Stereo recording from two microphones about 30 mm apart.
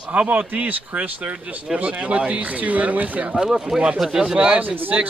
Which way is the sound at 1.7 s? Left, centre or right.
Right.